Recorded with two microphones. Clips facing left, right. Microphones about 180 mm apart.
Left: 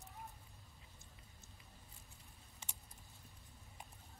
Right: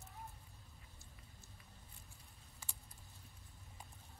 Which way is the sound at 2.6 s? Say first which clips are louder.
Left 1 dB; 20° left (ahead or behind).